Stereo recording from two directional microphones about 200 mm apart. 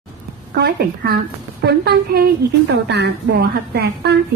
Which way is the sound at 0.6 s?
50° right (ahead or behind).